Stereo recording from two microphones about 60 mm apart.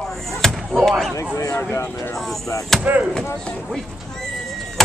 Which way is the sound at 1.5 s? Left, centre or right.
Left.